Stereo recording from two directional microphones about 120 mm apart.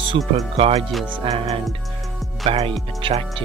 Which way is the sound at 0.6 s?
60° right (ahead or behind).